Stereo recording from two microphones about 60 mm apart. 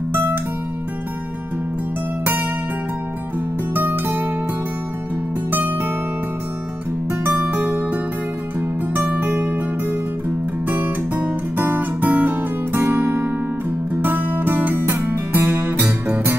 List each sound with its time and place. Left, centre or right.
3.7 s music: right
5.5 s music: right
7.4 s music: right
10.7 s guitar: right
13.9 s music: right
15.0 s guitar: right